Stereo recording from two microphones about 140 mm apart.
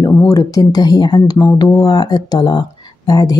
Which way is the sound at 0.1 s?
20° left (ahead or behind).